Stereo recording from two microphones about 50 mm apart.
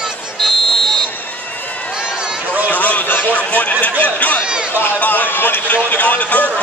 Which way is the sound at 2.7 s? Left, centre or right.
Left.